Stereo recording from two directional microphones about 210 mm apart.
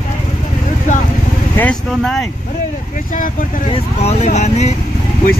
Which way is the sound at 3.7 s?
30° left (ahead or behind).